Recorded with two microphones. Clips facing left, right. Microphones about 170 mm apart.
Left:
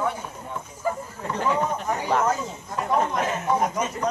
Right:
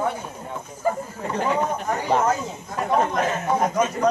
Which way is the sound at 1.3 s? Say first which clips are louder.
Right 1 dB; 15° right (ahead or behind).